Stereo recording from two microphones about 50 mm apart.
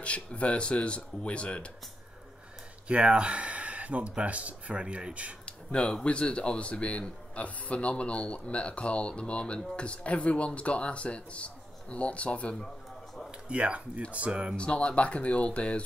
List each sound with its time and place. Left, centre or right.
0.0 s a man's voice: left
2.9 s speech: right
5.4 s a sound: centre
6.0 s a man's voice: left
13.5 s speech: right
14.6 s a man's voice: centre